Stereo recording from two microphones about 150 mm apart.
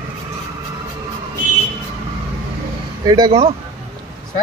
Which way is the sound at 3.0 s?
30° right (ahead or behind).